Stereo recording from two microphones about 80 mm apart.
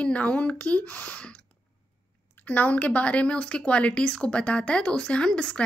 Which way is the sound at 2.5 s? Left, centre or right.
Centre.